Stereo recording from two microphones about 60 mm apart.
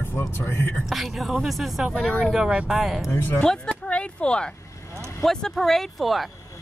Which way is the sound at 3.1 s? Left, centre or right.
Left.